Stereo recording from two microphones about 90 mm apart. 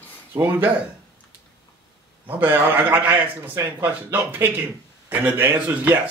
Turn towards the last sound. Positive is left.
turn(degrees=-15)  # may be behind; listen again after turning